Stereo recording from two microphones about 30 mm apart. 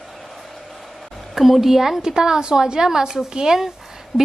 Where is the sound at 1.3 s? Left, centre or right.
Centre.